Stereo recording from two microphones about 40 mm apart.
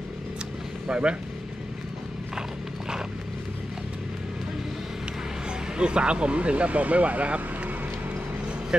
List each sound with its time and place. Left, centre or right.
0.8 s speech: right
5.8 s speech: right